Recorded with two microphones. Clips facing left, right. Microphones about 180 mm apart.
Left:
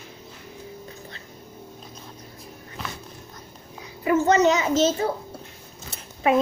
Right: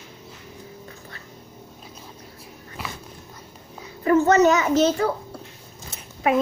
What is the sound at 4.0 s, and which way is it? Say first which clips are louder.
A child's voice: right 2 dB; 15° left (ahead or behind).